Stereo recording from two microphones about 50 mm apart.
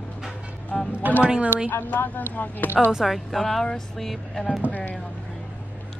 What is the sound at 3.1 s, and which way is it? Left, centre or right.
Speech, centre.